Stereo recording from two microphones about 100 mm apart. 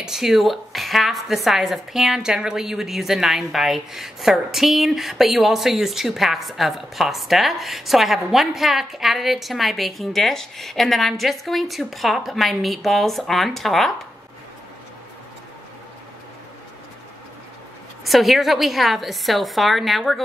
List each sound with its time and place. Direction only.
0.0 s a woman's voice: 5° right (ahead or behind)
18.0 s a woman's voice: centre (ahead or behind)